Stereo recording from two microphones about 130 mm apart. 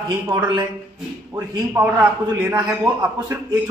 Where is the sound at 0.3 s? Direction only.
15° right (ahead or behind).